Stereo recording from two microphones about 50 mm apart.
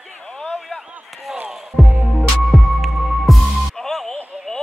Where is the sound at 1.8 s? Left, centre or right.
Centre.